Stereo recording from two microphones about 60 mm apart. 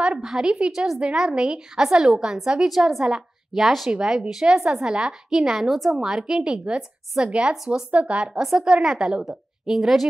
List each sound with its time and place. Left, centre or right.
0.2 s a woman's voice: centre
8.4 s a woman's voice: centre